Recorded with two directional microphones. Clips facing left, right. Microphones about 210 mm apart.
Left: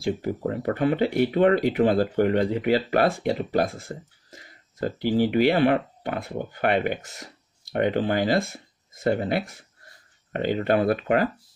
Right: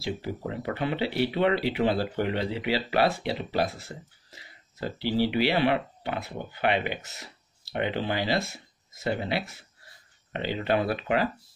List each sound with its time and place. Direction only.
0.0 s speech: 50° left (ahead or behind)